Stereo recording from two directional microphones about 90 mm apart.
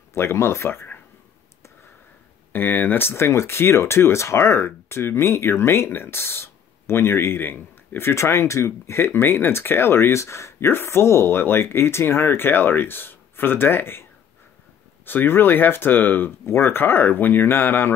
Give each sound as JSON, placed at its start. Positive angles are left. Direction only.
{"t": 0.1, "sound": "speech", "side_deg": 30}
{"t": 2.5, "sound": "speech", "side_deg": 20}
{"t": 15.0, "sound": "speech", "side_deg": 25}